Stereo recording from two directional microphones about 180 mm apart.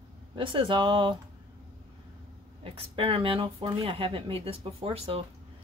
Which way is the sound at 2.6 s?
30° right (ahead or behind).